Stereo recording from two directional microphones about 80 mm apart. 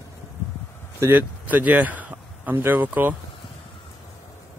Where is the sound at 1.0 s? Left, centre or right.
Right.